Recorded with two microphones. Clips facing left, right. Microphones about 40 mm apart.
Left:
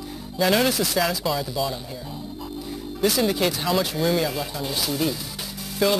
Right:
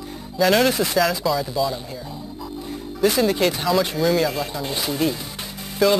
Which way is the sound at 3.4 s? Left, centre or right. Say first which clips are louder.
Right 3 dB; centre.